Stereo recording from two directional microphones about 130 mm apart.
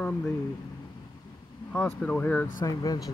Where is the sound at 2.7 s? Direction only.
30° left (ahead or behind).